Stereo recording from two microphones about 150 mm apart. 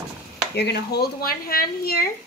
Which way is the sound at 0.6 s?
90° left.